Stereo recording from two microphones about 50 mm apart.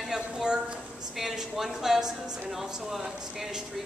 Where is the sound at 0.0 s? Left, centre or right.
Centre.